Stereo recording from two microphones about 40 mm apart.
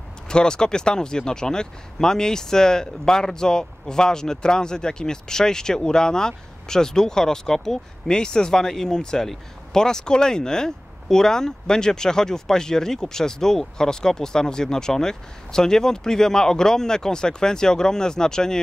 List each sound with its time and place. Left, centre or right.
0.3 s speech: centre